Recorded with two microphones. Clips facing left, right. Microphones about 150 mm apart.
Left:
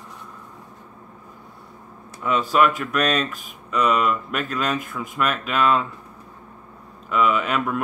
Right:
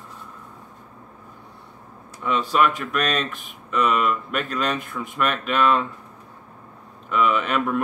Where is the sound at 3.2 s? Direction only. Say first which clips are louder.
Left 2 dB; 40° left (ahead or behind).